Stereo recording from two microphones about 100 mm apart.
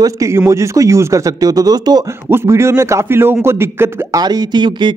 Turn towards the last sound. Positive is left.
turn(degrees=-50)  # may be behind; listen again after turning